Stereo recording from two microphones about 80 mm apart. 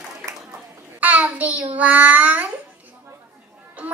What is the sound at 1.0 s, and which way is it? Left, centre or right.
A child's voice, centre.